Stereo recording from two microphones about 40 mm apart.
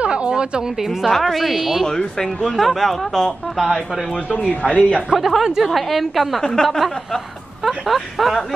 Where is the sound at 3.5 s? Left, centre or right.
Centre.